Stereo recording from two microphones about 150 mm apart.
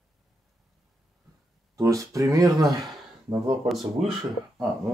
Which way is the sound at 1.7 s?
20° right (ahead or behind).